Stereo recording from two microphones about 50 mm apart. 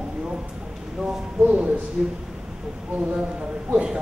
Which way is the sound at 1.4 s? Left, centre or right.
Right.